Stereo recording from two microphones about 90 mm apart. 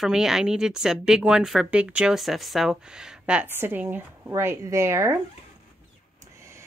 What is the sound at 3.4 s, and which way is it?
Speech, 25° right (ahead or behind).